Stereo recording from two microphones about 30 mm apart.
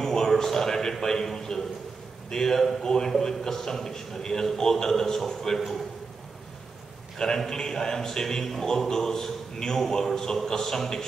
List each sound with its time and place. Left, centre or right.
0.0 s a man's voice: centre
7.2 s a man's voice: left